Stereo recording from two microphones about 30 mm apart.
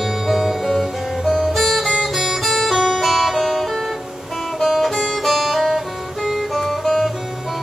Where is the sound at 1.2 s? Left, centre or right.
Centre.